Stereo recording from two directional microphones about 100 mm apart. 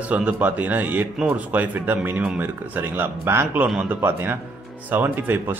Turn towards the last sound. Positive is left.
turn(degrees=-20)  # may be behind; listen again after turning